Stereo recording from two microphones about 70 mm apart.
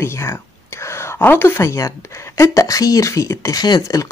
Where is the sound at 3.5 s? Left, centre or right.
Left.